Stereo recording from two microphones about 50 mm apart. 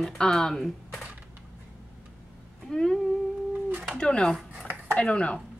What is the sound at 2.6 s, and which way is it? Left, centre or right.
A woman's voice, centre.